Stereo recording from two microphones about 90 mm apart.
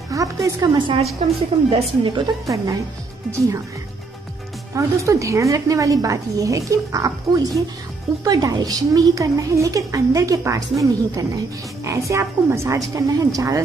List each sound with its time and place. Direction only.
0.1 s a woman's voice: 35° right (ahead or behind)
0.7 s a woman's voice: 70° right (ahead or behind)
2.4 s a woman's voice: 40° right (ahead or behind)
4.7 s a woman's voice: 35° right (ahead or behind)